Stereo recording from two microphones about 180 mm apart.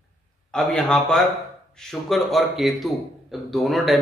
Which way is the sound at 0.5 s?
5° left (ahead or behind).